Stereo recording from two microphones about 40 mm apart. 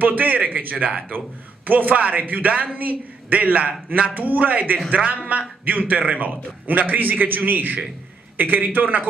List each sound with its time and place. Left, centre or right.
0.0 s a man's voice: right